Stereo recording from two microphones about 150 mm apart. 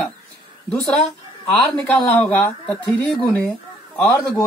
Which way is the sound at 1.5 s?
5° left (ahead or behind).